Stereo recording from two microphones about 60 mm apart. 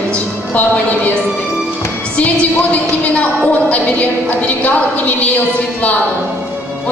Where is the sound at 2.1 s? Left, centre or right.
Left.